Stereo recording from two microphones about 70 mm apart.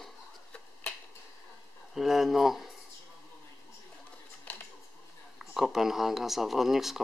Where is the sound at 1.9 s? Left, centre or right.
Centre.